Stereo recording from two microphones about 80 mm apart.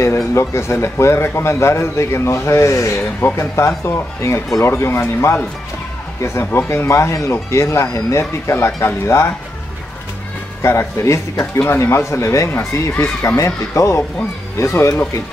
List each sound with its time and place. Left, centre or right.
0.3 s speech: left
10.6 s speech: left